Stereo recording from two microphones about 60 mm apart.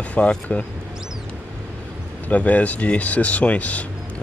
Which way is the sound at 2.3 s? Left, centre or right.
Left.